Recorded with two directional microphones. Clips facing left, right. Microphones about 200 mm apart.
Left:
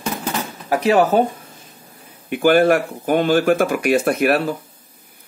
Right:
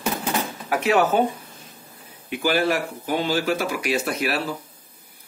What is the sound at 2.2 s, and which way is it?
Speech, 55° left (ahead or behind).